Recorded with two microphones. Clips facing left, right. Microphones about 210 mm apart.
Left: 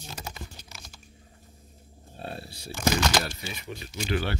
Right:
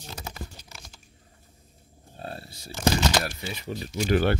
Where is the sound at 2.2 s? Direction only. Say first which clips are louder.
Even; 25° left (ahead or behind).